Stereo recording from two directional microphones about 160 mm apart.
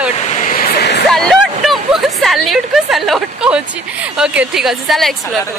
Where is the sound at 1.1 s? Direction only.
Centre (ahead or behind).